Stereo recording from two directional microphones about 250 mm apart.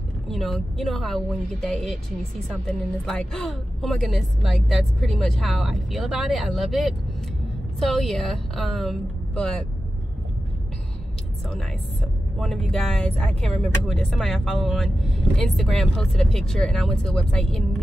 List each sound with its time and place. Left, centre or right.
0.3 s speech: centre
11.4 s speech: centre